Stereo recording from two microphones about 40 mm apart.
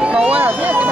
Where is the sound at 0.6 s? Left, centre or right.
Right.